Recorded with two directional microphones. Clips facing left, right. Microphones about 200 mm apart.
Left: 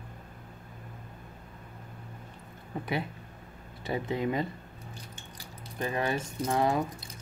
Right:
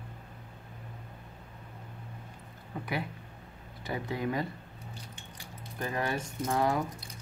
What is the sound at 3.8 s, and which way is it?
Speech, 25° left (ahead or behind).